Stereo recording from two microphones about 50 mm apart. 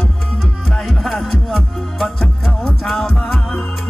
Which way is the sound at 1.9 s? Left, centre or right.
Centre.